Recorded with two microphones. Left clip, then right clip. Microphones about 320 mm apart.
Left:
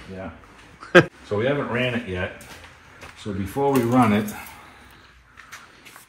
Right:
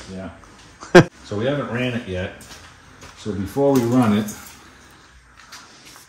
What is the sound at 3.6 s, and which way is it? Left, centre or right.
Speech, centre.